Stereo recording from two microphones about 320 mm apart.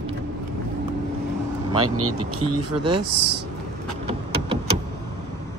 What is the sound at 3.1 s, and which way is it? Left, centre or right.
Speech, right.